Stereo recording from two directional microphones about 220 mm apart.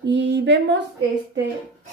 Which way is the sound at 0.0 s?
55° right (ahead or behind).